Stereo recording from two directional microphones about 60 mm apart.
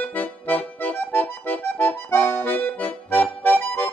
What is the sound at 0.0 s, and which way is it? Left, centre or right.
Accordion, left.